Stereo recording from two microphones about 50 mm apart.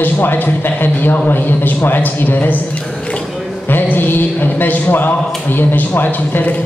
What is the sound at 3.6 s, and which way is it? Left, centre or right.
A man's voice, left.